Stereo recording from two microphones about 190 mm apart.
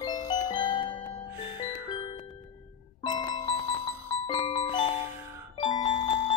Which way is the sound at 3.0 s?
25° left (ahead or behind).